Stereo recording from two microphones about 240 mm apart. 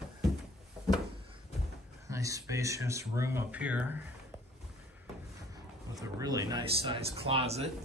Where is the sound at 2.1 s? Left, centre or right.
Centre.